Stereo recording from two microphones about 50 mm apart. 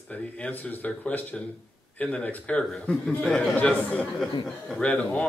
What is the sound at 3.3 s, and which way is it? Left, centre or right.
Speech, centre.